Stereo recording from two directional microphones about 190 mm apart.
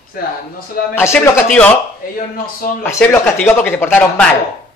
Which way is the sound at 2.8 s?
10° left (ahead or behind).